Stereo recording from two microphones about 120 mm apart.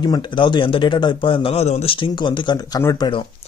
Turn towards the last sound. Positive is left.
turn(degrees=45)  # may be behind; listen again after turning